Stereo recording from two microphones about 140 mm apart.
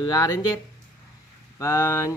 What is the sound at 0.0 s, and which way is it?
Speech, 25° left (ahead or behind).